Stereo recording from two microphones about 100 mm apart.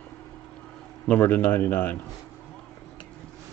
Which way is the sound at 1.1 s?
20° left (ahead or behind).